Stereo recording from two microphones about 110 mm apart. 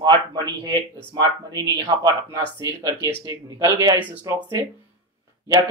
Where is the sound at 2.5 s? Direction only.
30° right (ahead or behind).